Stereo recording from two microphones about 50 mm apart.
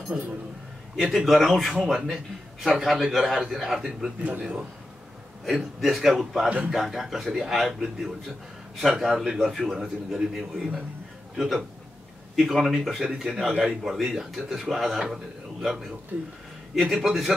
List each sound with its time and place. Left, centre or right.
0.9 s speech: centre
4.4 s speech: centre
5.8 s speech: centre
16.1 s speech: right
16.7 s speech: centre